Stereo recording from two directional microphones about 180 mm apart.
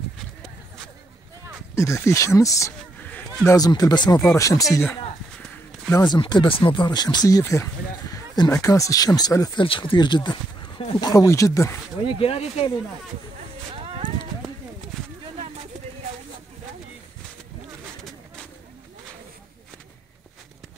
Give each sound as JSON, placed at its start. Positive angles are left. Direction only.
{"t": 1.8, "sound": "speech", "side_deg": 15}
{"t": 12.2, "sound": "speech", "side_deg": 35}
{"t": 13.7, "sound": "a sound", "side_deg": -30}